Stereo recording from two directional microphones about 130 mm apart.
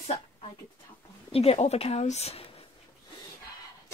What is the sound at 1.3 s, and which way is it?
Speech, 50° left (ahead or behind).